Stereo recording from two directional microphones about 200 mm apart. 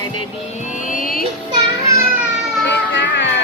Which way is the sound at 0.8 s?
45° left (ahead or behind).